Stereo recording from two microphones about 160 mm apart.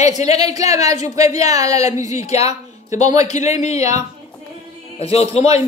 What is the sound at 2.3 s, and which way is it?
A man's voice, 40° left (ahead or behind).